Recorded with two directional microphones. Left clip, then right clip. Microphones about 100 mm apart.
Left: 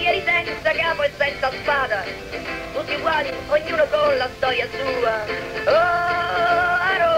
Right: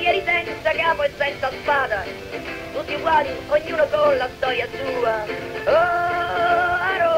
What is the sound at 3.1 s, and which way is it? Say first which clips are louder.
Radio: right 5 dB; 30° right (ahead or behind).